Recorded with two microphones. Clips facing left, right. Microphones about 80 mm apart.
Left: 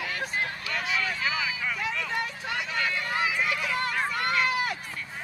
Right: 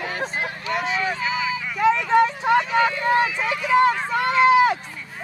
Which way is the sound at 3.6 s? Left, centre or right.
Centre.